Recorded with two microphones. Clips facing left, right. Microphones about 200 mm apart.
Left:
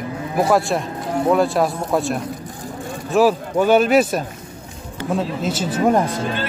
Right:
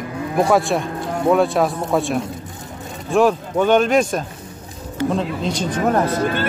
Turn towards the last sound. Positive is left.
turn(degrees=-55)  # may be behind; listen again after turning